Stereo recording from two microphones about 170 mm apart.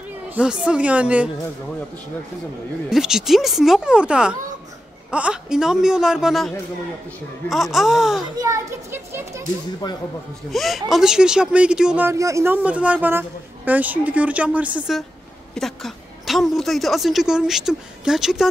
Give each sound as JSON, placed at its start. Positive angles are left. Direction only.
{"t": 0.3, "sound": "speech", "side_deg": -5}
{"t": 2.9, "sound": "a woman's voice", "side_deg": -5}
{"t": 8.2, "sound": "speech", "side_deg": -20}
{"t": 9.8, "sound": "speech", "side_deg": 25}
{"t": 10.5, "sound": "a woman's voice", "side_deg": 0}